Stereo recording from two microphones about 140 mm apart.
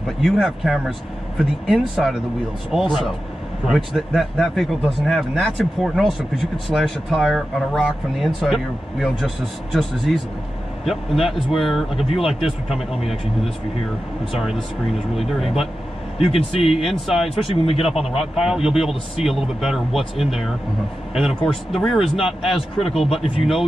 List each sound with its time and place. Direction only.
0.2 s a man's voice: centre (ahead or behind)
15.1 s a man's voice: centre (ahead or behind)
16.2 s speech: 45° left (ahead or behind)
16.7 s a man's voice: centre (ahead or behind)
17.6 s speech: 45° left (ahead or behind)
18.2 s a man's voice: 5° right (ahead or behind)